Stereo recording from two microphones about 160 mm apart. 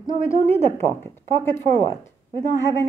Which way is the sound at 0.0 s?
20° left (ahead or behind).